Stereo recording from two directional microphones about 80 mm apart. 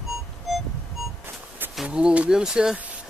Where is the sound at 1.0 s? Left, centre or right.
Centre.